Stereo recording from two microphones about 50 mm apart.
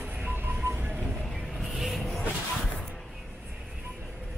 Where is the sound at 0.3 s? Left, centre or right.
Right.